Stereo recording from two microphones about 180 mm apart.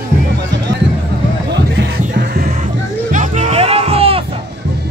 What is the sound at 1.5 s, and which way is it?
Music, 70° right (ahead or behind).